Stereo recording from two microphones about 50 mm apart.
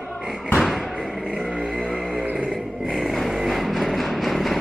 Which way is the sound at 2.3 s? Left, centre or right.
Centre.